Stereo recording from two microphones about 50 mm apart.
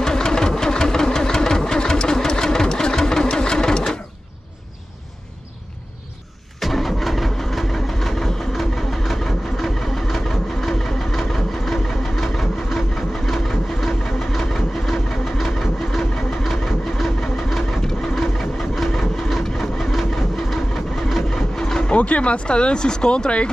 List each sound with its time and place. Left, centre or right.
0.0 s engine: centre
6.6 s vehicle: centre
21.9 s speech: left